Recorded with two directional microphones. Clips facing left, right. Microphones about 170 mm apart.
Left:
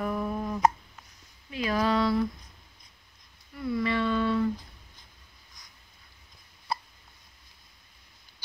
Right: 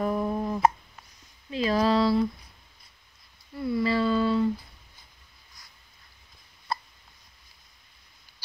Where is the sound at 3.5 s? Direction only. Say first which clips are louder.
Right 3 dB; 30° right (ahead or behind).